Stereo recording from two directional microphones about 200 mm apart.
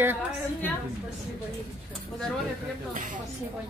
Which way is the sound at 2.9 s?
40° right (ahead or behind).